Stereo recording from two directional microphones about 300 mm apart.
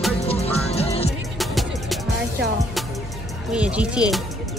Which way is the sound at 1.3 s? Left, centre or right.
Centre.